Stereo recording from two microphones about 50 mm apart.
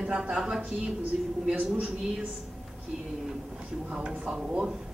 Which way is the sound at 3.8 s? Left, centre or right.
Right.